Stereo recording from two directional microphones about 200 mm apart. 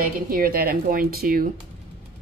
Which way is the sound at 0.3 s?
45° right (ahead or behind).